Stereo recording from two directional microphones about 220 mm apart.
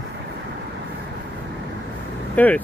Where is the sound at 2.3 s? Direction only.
5° left (ahead or behind).